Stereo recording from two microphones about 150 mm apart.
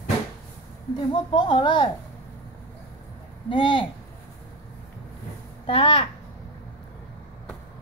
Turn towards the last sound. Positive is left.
turn(degrees=35)  # may be behind; listen again after turning